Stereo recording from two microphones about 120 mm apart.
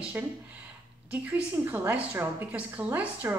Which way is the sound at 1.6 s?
15° right (ahead or behind).